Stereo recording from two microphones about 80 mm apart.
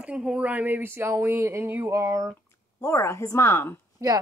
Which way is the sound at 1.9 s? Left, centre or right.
Right.